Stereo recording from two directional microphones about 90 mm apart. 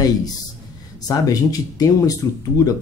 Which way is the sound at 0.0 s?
45° left (ahead or behind).